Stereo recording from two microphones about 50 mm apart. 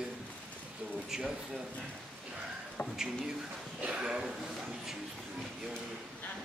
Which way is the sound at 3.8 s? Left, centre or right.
Centre.